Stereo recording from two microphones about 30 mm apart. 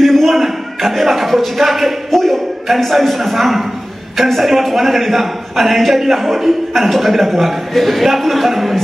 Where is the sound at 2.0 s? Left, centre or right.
Centre.